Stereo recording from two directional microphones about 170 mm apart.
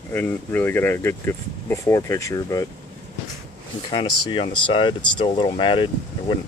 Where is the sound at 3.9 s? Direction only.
25° left (ahead or behind).